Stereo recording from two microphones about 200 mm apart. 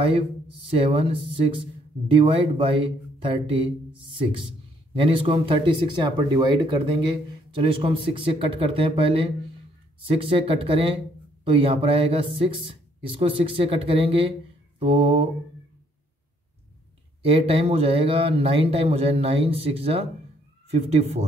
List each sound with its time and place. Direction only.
0.7 s speech: 30° right (ahead or behind)
17.2 s speech: 30° right (ahead or behind)